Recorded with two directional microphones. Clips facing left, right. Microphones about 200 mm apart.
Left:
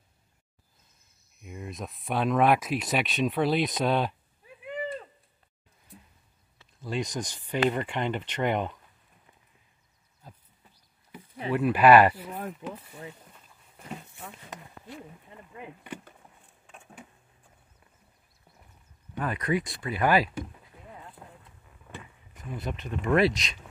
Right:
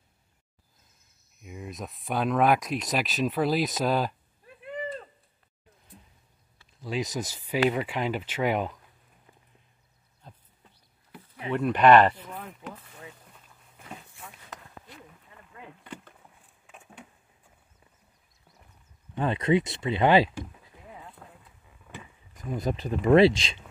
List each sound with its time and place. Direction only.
1.4 s speech: centre (ahead or behind)
4.6 s a sound: centre (ahead or behind)
6.8 s speech: centre (ahead or behind)
11.5 s speech: 5° left (ahead or behind)
12.4 s speech: 35° left (ahead or behind)
15.2 s rowboat: 20° left (ahead or behind)
16.6 s a sound: centre (ahead or behind)
19.1 s speech: 25° right (ahead or behind)
21.2 s boat: 5° left (ahead or behind)
22.4 s speech: 40° right (ahead or behind)